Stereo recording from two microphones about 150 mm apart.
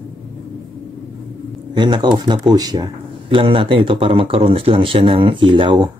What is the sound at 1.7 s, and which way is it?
Speech, 30° right (ahead or behind).